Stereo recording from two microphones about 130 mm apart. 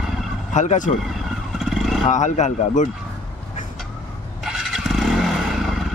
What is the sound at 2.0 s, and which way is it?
Speech, 65° left (ahead or behind).